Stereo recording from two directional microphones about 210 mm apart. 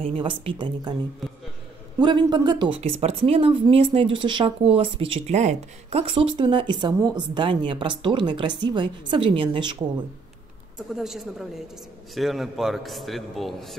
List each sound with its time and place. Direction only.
0.0 s a woman's voice: 25° right (ahead or behind)
2.0 s a woman's voice: 20° right (ahead or behind)
11.0 s speech: centre (ahead or behind)